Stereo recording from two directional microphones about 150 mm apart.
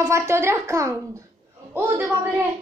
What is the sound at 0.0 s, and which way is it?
A woman's voice, 15° right (ahead or behind).